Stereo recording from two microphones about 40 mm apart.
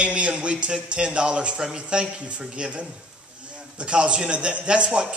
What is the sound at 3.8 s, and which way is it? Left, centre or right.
Speech, right.